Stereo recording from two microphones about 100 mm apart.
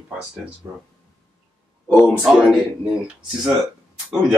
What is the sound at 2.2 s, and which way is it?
Speech, 5° right (ahead or behind).